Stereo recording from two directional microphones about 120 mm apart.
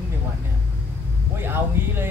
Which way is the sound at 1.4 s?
20° right (ahead or behind).